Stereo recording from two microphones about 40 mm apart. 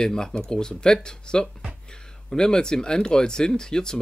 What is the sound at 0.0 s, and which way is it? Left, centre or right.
Speech, centre.